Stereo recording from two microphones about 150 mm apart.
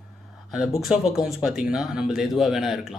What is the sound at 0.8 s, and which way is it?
Speech, 5° right (ahead or behind).